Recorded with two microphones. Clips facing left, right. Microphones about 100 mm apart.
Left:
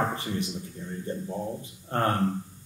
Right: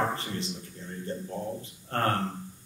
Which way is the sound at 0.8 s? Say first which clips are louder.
Left 4 dB; 15° left (ahead or behind).